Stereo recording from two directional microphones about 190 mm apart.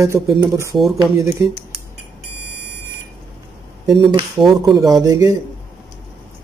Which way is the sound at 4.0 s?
20° right (ahead or behind).